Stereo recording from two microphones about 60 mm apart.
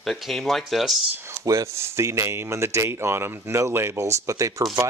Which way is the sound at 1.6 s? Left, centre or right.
Right.